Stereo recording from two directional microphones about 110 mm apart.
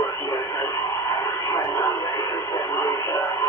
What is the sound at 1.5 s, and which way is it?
Radio, 30° left (ahead or behind).